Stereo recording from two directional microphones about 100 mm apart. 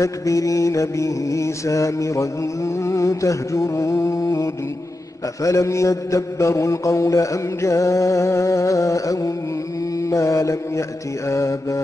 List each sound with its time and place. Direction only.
0.0 s mantra: 35° left (ahead or behind)